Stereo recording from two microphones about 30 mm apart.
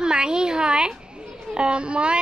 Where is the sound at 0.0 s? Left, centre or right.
Right.